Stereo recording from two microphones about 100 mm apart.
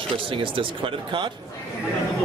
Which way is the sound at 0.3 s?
60° right (ahead or behind).